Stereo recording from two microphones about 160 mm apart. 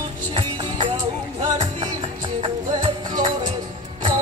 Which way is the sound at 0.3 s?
30° right (ahead or behind).